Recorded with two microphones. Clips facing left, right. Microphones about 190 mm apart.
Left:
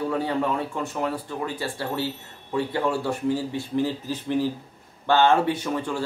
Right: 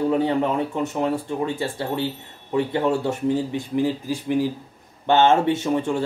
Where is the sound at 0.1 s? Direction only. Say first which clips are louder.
Right 4 dB; 20° right (ahead or behind).